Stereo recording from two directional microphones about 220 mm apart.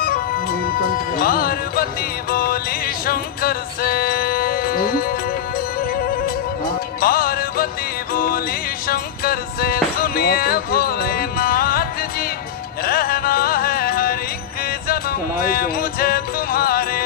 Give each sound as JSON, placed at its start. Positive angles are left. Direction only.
{"t": 0.0, "sound": "music", "side_deg": 40}
{"t": 6.2, "sound": "music", "side_deg": 40}